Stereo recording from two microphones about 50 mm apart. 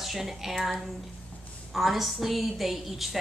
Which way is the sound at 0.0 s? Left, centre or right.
Centre.